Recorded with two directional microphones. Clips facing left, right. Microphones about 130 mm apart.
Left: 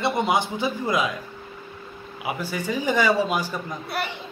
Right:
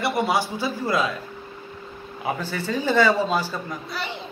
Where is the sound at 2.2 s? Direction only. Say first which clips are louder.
Right 1 dB; 10° left (ahead or behind).